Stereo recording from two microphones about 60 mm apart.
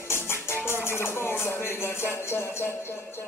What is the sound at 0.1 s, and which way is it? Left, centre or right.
Music, left.